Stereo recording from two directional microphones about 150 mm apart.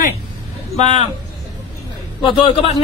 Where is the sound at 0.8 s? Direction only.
50° left (ahead or behind).